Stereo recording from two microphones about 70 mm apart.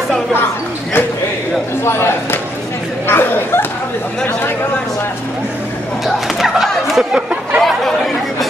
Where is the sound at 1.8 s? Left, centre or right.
Left.